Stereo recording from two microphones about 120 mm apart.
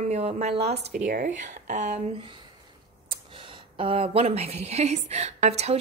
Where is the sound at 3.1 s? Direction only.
45° right (ahead or behind).